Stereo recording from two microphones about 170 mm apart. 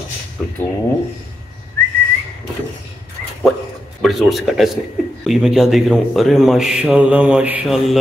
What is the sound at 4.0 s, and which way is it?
A man's voice, centre (ahead or behind).